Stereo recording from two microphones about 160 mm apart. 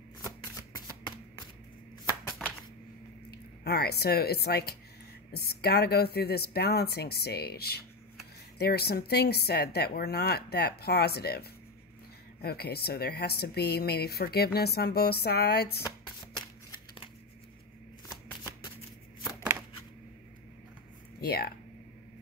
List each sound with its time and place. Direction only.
0.2 s shuffling cards: 20° left (ahead or behind)
3.3 s speech: 80° left
21.2 s speech: 80° left